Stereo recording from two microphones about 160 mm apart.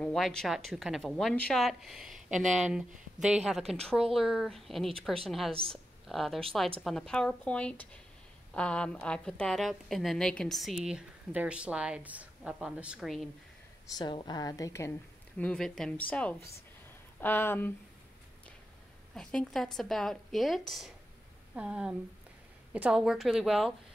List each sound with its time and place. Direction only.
0.0 s a woman's voice: 5° left (ahead or behind)
13.8 s a woman's voice: 25° left (ahead or behind)
19.1 s a woman's voice: centre (ahead or behind)